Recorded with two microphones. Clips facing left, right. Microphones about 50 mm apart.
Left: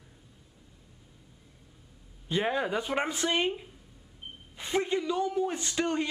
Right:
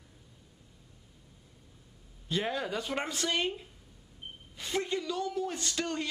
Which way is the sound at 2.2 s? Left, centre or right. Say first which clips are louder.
Left 4 dB; left.